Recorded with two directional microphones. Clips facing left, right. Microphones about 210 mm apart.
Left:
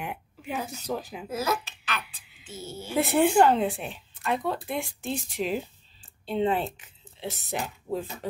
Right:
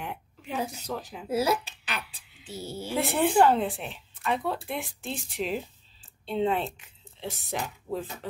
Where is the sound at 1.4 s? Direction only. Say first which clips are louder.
Even; 30° right (ahead or behind).